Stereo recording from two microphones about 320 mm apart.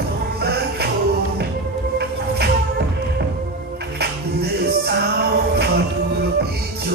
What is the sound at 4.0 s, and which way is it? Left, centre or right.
Music, right.